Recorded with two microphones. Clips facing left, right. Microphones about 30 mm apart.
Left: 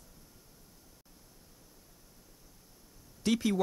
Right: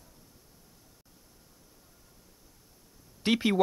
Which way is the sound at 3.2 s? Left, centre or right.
Right.